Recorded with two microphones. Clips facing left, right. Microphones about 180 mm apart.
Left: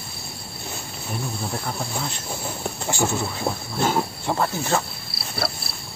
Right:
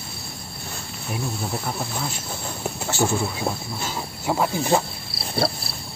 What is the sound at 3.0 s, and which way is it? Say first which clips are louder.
Speech: right 2 dB; 10° right (ahead or behind).